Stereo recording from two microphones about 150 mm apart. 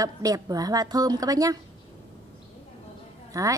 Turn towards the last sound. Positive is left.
turn(degrees=-20)  # may be behind; listen again after turning